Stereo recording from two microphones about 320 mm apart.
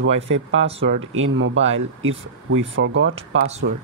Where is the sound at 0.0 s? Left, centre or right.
Right.